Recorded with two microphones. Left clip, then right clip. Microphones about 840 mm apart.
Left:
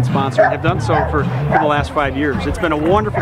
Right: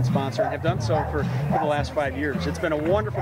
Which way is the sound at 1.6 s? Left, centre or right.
Left.